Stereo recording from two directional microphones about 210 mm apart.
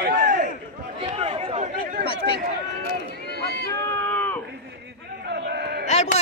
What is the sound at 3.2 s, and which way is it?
Run, 50° left (ahead or behind).